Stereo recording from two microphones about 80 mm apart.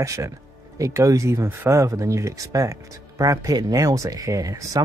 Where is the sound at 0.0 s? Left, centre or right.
Right.